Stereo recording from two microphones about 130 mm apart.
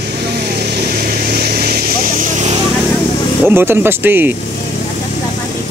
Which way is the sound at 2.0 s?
80° right.